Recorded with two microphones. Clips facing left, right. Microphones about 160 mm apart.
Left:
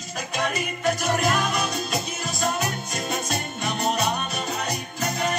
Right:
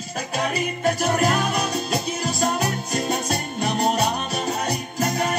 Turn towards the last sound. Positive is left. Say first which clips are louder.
# right 3 dB
turn(degrees=-40)  # may be behind; listen again after turning